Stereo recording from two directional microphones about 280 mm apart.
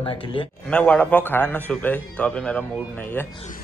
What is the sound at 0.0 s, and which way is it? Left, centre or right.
Speech, centre.